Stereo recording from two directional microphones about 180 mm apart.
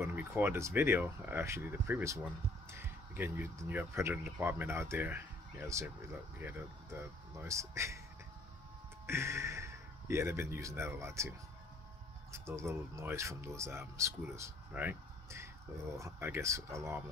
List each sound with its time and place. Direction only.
0.0 s speech: 15° right (ahead or behind)
9.0 s speech: 15° right (ahead or behind)